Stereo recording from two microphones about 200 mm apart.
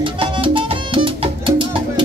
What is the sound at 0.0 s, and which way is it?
Music, 25° right (ahead or behind).